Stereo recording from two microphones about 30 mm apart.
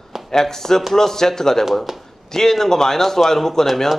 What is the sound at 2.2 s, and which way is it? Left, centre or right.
A man's voice, centre.